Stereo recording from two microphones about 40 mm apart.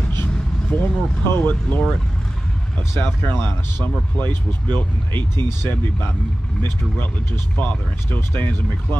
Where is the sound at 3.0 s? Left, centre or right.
Left.